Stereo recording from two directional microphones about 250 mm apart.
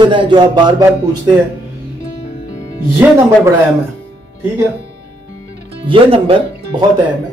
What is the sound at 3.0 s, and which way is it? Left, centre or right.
Speech, centre.